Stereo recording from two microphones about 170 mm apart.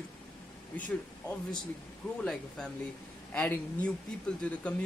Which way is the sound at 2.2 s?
5° left (ahead or behind).